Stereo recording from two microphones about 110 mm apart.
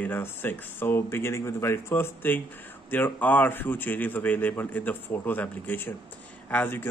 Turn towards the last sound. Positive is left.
turn(degrees=15)  # may be behind; listen again after turning